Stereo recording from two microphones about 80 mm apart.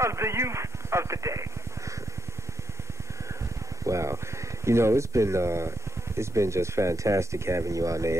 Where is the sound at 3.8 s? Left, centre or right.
Right.